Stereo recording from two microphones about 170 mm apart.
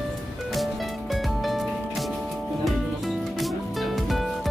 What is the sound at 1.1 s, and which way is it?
Music, centre (ahead or behind).